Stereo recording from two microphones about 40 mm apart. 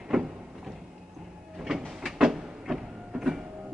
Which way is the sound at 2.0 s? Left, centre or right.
Centre.